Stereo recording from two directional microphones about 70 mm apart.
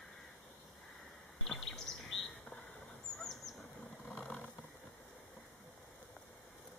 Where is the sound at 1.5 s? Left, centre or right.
Centre.